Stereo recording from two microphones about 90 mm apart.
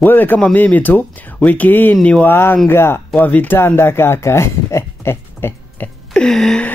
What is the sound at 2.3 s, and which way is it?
Speech, 25° left (ahead or behind).